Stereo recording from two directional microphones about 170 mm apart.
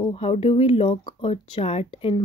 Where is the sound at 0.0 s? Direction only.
30° left (ahead or behind).